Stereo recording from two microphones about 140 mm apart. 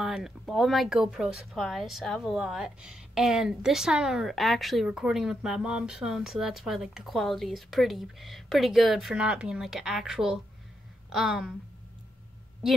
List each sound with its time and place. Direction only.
0.0 s a woman's voice: 5° right (ahead or behind)